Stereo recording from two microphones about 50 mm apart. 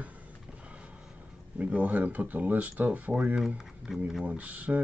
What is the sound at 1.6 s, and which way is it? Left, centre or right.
Speech, right.